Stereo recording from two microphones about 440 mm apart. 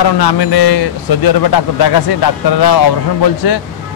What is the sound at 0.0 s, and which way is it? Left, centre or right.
A man's voice, left.